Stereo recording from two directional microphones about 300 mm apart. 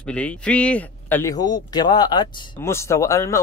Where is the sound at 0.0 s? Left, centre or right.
Centre.